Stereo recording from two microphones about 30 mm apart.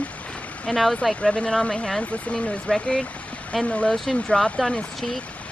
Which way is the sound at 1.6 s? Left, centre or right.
Left.